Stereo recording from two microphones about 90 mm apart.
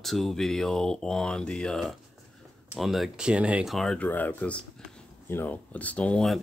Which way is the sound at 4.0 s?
20° left (ahead or behind).